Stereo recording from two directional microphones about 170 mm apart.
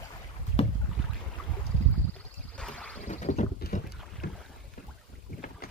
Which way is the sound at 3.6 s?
65° left (ahead or behind).